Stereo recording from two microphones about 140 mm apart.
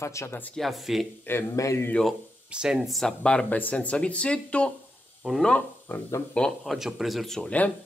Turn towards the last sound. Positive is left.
turn(degrees=10)  # may be behind; listen again after turning